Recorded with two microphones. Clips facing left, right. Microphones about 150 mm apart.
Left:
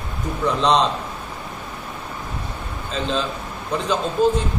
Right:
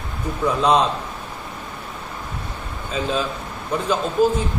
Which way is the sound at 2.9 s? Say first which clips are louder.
Right 1 dB; 5° right (ahead or behind).